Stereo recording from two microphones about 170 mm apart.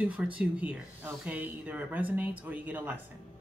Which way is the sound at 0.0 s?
10° right (ahead or behind).